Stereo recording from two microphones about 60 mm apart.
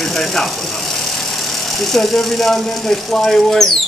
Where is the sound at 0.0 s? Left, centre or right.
Centre.